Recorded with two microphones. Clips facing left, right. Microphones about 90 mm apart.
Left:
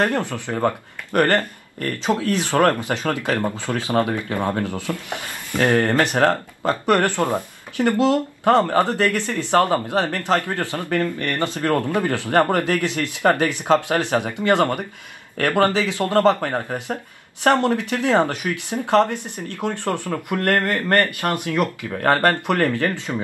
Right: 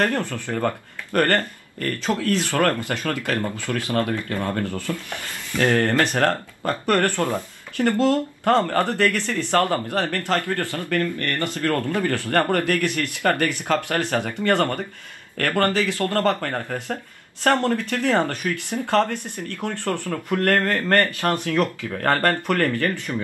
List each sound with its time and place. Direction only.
0.0 s speech: 15° left (ahead or behind)